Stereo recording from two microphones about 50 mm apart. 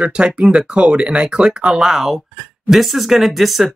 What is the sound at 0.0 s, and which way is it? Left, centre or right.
Speech, right.